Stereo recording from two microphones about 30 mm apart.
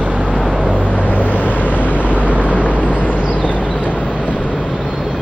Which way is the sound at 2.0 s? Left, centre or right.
Right.